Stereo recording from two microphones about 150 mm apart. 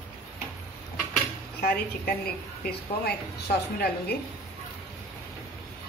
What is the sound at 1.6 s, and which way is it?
A woman's voice, 85° left.